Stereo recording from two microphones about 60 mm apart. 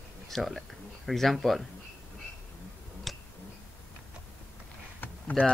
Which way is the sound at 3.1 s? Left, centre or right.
Centre.